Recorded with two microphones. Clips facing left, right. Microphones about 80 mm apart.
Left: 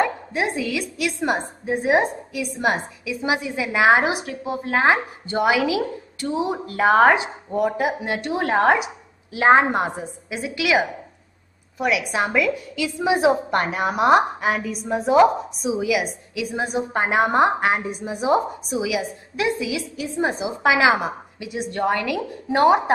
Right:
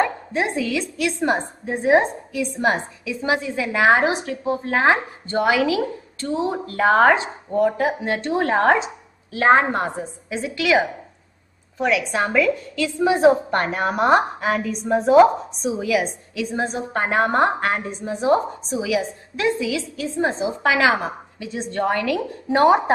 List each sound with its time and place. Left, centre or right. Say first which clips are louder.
0.0 s a woman's voice: right 1 dB; centre
22.6 s a woman's voice: right 1 dB; centre